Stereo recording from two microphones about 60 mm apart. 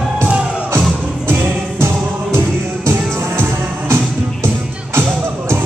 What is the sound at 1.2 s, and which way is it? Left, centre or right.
Music, right.